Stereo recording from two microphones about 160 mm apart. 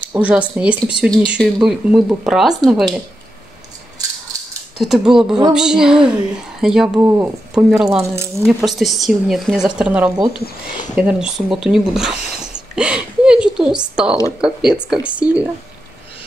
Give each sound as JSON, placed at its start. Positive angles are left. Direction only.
{"t": 0.0, "sound": "speech", "side_deg": -10}
{"t": 4.7, "sound": "speech", "side_deg": 0}
{"t": 7.0, "sound": "speech", "side_deg": -15}
{"t": 7.5, "sound": "speech", "side_deg": -5}
{"t": 8.0, "sound": "speech", "side_deg": -15}
{"t": 8.5, "sound": "speech", "side_deg": -5}